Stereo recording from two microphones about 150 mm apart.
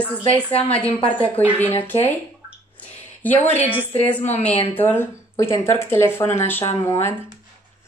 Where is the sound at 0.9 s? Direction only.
35° left (ahead or behind).